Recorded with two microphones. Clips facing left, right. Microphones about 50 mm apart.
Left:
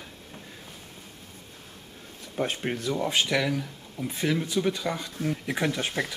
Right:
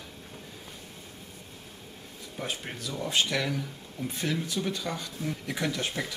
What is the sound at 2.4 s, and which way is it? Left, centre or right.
Speech, left.